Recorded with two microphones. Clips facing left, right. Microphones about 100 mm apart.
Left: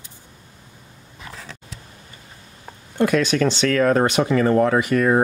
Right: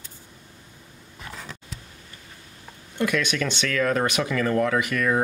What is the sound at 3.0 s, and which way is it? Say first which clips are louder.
Speech: left 7 dB; 35° left (ahead or behind).